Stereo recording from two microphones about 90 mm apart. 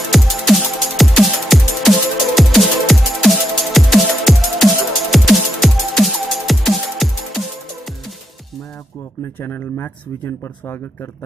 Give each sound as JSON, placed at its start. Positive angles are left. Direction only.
{"t": 0.1, "sound": "music", "side_deg": 0}
{"t": 9.4, "sound": "speech", "side_deg": 25}